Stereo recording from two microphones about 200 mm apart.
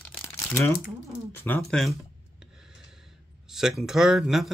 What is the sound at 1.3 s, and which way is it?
Speech, 10° left (ahead or behind).